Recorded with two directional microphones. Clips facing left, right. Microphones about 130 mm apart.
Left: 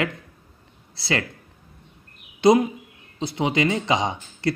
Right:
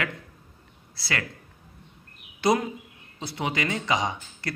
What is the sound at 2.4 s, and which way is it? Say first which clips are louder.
A man's voice: left 7 dB; 20° left (ahead or behind).